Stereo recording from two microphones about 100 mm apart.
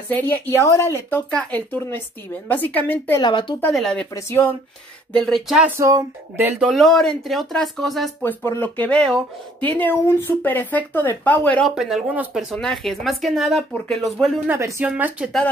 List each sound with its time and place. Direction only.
0.1 s speech: 15° left (ahead or behind)
0.6 s speech: 30° left (ahead or behind)
3.2 s speech: 55° left (ahead or behind)
3.7 s speech: 5° left (ahead or behind)
4.1 s speech: 25° left (ahead or behind)
5.1 s speech: 5° left (ahead or behind)
5.7 s speech: 30° right (ahead or behind)
6.7 s speech: 5° left (ahead or behind)
8.2 s speech: 20° left (ahead or behind)
9.7 s speech: 20° left (ahead or behind)
11.6 s speech: 5° right (ahead or behind)
14.5 s speech: 20° right (ahead or behind)